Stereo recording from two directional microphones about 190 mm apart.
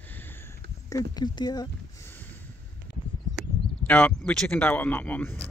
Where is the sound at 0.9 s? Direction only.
20° left (ahead or behind).